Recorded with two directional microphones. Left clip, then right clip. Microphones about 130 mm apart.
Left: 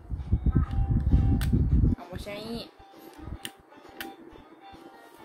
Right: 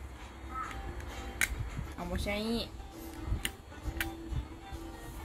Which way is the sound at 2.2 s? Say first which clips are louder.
Right 2 dB; 45° right (ahead or behind).